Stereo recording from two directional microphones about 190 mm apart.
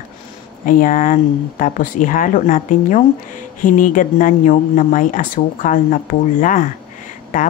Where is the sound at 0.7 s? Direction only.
45° left (ahead or behind).